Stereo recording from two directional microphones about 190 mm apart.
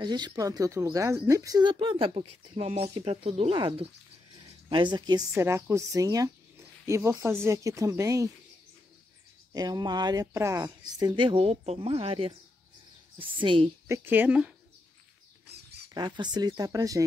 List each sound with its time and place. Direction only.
0.0 s speech: 20° right (ahead or behind)
2.9 s a woman's voice: 20° right (ahead or behind)
9.5 s speech: 20° right (ahead or behind)
13.8 s a woman's voice: 15° right (ahead or behind)
15.9 s speech: 20° right (ahead or behind)